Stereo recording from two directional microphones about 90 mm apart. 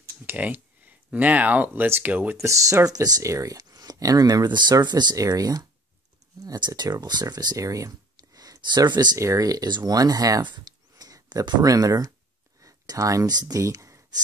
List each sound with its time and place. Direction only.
0.3 s speech: 20° right (ahead or behind)
2.3 s speech: 35° right (ahead or behind); by 5.1 s 55° right (ahead or behind)
5.1 s speech: 40° right (ahead or behind)
9.2 s speech: 40° right (ahead or behind)